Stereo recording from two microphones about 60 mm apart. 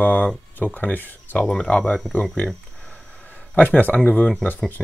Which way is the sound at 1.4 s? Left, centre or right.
Centre.